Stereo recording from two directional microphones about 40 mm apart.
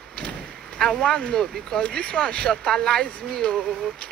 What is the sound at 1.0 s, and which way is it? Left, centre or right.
Speech, left.